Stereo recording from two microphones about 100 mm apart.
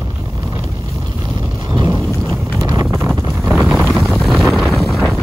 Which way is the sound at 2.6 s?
35° right (ahead or behind).